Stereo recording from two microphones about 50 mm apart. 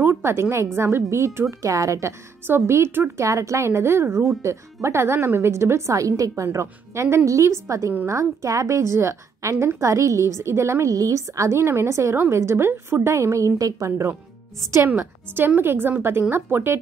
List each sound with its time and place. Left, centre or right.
0.2 s a woman's voice: right
2.6 s speech: right
3.2 s speech: right
7.2 s a woman's voice: right
9.8 s a woman's voice: right
15.0 s a woman's voice: right